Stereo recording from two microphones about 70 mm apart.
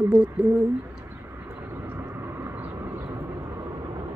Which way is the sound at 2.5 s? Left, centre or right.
Right.